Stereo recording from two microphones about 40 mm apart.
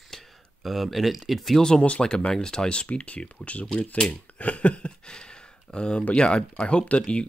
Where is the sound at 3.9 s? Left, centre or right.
Centre.